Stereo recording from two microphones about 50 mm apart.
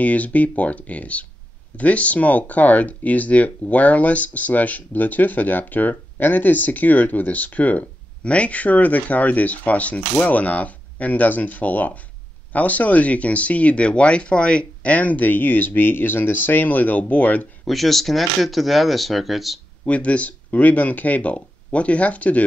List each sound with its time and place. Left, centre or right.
0.0 s speech: left
17.6 s speech: centre
19.8 s speech: left